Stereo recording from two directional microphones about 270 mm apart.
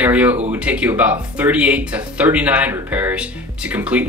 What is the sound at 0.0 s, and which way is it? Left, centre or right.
Speech, centre.